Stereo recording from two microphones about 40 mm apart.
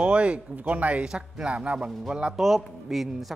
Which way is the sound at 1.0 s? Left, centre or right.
Centre.